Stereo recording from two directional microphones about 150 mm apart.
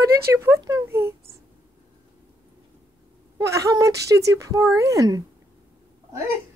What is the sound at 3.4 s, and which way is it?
Speech, 20° right (ahead or behind).